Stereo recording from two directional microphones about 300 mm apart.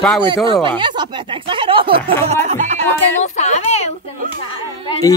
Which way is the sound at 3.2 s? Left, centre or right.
Left.